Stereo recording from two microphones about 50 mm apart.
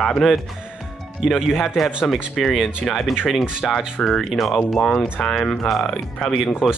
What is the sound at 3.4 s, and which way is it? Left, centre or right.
Speech, centre.